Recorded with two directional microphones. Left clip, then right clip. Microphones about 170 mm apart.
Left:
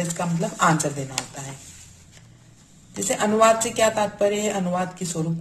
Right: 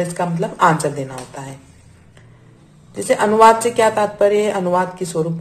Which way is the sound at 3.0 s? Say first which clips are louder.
Right 7 dB; 10° left (ahead or behind).